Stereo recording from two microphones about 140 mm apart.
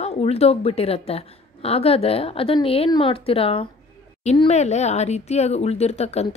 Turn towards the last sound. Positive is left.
turn(degrees=50)  # may be behind; listen again after turning